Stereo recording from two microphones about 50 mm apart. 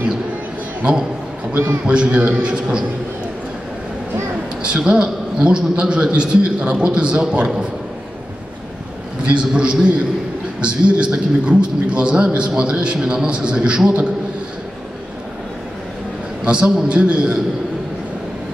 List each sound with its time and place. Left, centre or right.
1.9 s a man's voice: centre
4.6 s a man's voice: right
9.2 s a man's voice: right
16.4 s a man's voice: right